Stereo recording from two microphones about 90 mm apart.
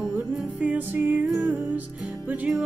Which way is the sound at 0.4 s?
15° right (ahead or behind).